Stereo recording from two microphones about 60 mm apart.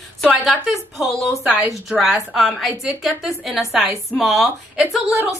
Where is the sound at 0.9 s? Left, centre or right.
Centre.